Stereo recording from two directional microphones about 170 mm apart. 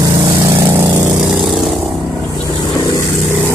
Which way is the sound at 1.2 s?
5° right (ahead or behind).